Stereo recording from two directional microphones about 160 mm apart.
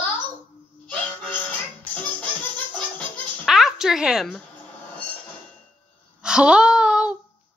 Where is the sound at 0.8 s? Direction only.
10° left (ahead or behind).